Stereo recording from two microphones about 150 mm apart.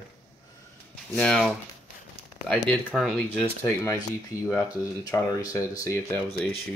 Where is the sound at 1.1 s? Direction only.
5° left (ahead or behind).